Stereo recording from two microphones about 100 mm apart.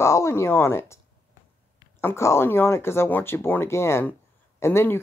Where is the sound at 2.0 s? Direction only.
30° left (ahead or behind).